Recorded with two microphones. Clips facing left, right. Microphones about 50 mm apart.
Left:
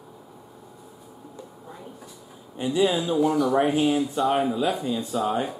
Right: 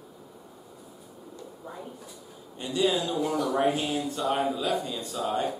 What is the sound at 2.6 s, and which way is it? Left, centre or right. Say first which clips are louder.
A man's voice: left 4 dB; centre.